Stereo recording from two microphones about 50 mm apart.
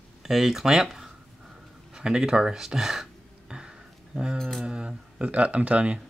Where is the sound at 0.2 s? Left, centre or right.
Centre.